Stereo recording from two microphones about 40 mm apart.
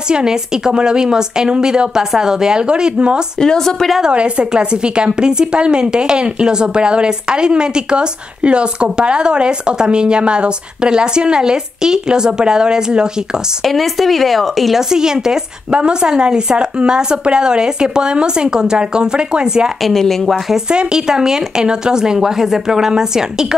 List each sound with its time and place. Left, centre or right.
0.1 s a woman's voice: centre
3.3 s a woman's voice: centre
4.1 s a woman's voice: right
13.7 s speech: centre
14.8 s a woman's voice: centre
19.8 s speech: centre
20.5 s a woman's voice: right